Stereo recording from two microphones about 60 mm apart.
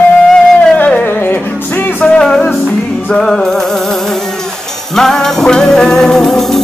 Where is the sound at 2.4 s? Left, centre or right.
Left.